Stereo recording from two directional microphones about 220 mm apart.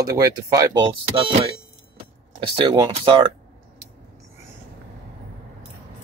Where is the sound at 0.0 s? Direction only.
15° right (ahead or behind).